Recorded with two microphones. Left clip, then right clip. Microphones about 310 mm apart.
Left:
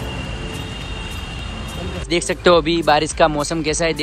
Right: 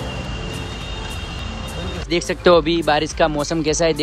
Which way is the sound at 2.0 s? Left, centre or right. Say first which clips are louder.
Even; centre.